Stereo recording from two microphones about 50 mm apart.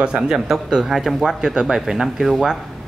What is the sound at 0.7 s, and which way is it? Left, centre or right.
Speech, centre.